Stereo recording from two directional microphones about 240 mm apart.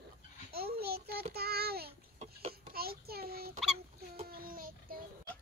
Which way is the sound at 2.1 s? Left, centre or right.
Right.